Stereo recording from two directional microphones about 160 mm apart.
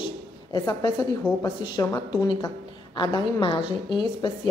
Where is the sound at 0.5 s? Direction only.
25° left (ahead or behind).